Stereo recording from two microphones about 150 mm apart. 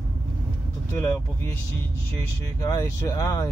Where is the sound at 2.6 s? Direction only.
20° left (ahead or behind).